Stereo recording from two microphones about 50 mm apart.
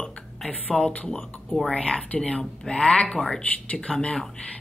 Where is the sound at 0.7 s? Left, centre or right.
Centre.